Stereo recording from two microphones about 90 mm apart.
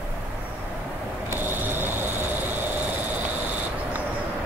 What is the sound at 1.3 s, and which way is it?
Vehicle, 20° right (ahead or behind).